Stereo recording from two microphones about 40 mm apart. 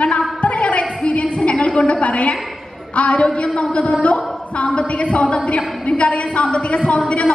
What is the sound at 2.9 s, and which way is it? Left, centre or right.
Speech, left.